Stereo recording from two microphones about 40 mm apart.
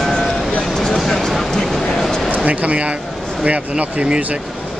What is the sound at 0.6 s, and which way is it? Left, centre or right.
Vehicle, centre.